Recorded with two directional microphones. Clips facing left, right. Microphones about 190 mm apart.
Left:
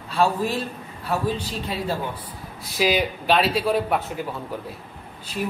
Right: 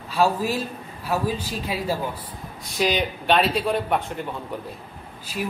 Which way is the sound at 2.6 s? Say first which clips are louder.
Left 1 dB; 5° left (ahead or behind).